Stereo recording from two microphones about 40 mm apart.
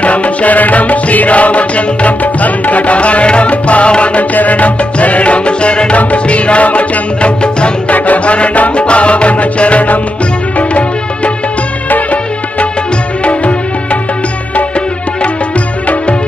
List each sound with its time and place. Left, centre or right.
0.0 s music: left
11.9 s music of bollywood: left